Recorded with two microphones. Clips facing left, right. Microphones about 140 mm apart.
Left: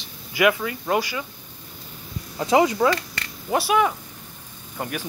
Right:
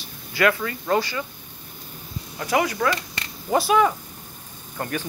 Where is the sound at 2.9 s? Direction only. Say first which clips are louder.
Left 2 dB; 20° right (ahead or behind).